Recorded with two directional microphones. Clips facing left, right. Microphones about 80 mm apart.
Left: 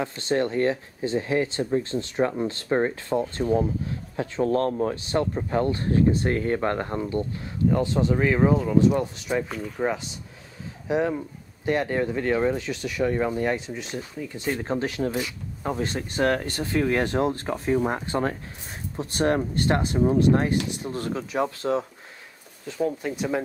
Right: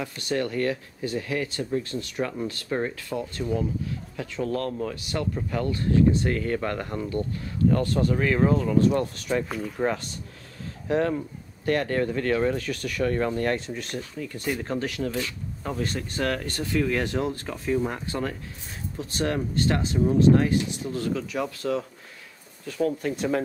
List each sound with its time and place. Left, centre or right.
0.0 s speech: left
9.5 s speech: centre
10.9 s speech: centre
15.0 s speech: centre